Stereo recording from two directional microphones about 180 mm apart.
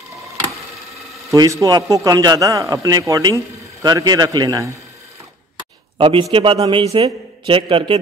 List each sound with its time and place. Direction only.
1.3 s a man's voice: 20° right (ahead or behind)
5.9 s a man's voice: 30° right (ahead or behind)